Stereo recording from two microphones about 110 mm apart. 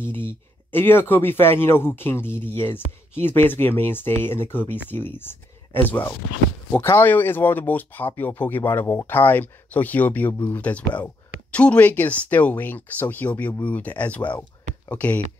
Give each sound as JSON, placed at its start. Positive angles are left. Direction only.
{"t": 0.0, "sound": "speech", "side_deg": 20}